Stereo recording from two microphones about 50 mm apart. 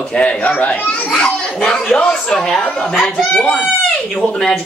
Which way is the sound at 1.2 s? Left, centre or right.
Centre.